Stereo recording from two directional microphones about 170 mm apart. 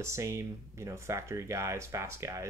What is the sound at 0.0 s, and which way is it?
Speech, 15° right (ahead or behind).